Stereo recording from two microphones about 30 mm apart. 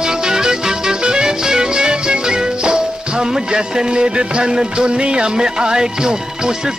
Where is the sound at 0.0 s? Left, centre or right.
Right.